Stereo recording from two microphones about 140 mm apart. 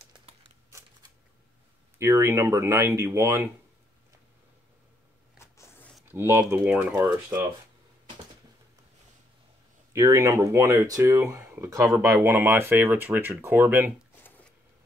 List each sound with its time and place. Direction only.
2.0 s speech: 20° right (ahead or behind)
5.4 s a sound: 20° left (ahead or behind)
6.1 s speech: 15° right (ahead or behind)
9.9 s speech: 20° right (ahead or behind)